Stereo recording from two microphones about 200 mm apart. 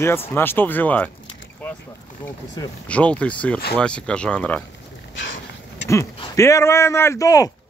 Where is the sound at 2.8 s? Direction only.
5° left (ahead or behind).